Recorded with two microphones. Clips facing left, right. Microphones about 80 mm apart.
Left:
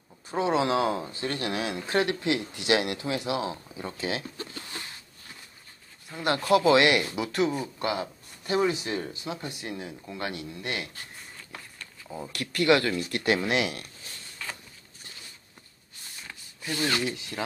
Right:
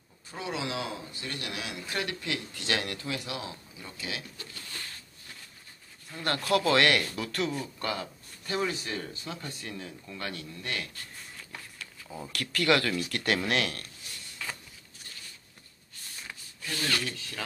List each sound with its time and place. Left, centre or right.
0.3 s speech: left
6.0 s speech: centre
11.3 s speech: centre
14.4 s a sound: centre
16.6 s speech: centre